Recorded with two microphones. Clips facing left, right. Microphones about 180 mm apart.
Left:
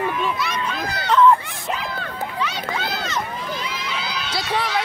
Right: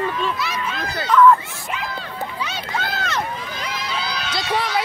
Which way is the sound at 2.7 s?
55° right (ahead or behind).